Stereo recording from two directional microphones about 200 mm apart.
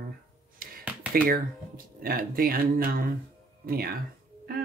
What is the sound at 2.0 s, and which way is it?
Speech, 45° right (ahead or behind).